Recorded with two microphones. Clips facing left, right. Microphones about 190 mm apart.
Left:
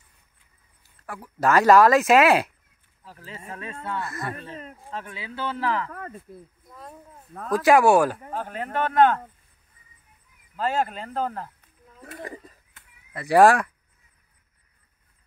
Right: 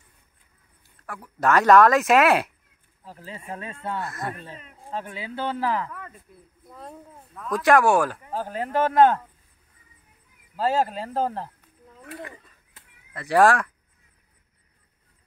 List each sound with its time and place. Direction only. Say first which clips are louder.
1.0 s speech: even; 5° left (ahead or behind)
3.1 s speech: right 3 dB; 20° right (ahead or behind)
4.8 s speech: right 6 dB; 25° right (ahead or behind)
5.3 s speech: right 1 dB; 45° right (ahead or behind)
5.9 s speech: left 4 dB; 45° left (ahead or behind)
7.3 s speech: left 3 dB; 35° left (ahead or behind)
7.6 s speech: left 2 dB; 10° left (ahead or behind)
8.3 s speech: right 3 dB; 35° right (ahead or behind)
10.6 s speech: right 2 dB; 30° right (ahead or behind)
12.0 s speech: left 1 dB; 35° left (ahead or behind)
13.1 s speech: left 2 dB; 10° left (ahead or behind)